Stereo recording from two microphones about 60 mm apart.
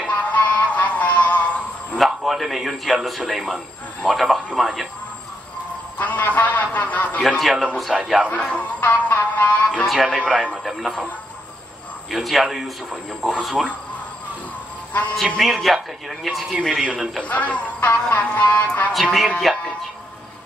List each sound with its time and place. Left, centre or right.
0.0 s music: left
2.0 s a man's voice: centre
5.9 s a sound: left
7.3 s a man's voice: centre
8.3 s music: left
9.8 s a man's voice: centre
10.3 s speech: centre
10.6 s a man's voice: centre
12.1 s a man's voice: centre
14.9 s a man's voice: left
15.3 s a man's voice: centre
17.2 s speech: left
18.9 s a man's voice: centre